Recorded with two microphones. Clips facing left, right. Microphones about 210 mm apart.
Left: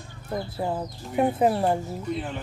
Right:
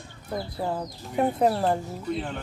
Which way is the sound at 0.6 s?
5° left (ahead or behind).